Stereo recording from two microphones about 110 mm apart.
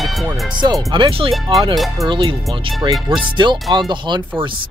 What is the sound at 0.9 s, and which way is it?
Speech, 45° right (ahead or behind).